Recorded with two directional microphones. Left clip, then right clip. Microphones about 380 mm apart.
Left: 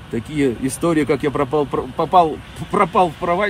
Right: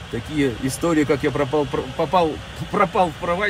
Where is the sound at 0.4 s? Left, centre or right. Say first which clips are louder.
Left 2 dB; left.